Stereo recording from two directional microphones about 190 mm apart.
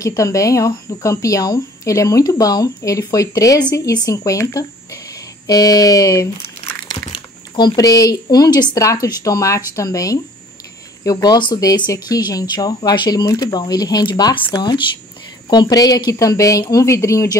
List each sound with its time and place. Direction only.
0.0 s a woman's voice: 15° left (ahead or behind)
7.5 s a woman's voice: 20° left (ahead or behind)